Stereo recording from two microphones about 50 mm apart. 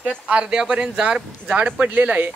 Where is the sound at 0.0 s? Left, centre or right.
Centre.